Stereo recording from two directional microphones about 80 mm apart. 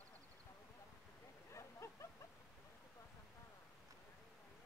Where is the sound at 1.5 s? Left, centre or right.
Left.